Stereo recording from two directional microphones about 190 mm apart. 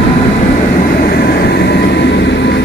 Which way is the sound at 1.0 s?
55° left (ahead or behind).